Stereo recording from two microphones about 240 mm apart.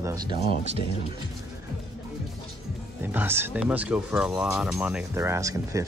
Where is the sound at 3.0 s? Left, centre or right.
Centre.